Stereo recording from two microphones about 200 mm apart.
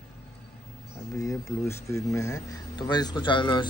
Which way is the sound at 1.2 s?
15° left (ahead or behind).